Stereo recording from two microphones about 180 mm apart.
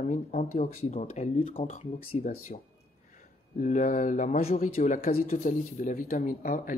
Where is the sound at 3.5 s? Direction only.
45° left (ahead or behind).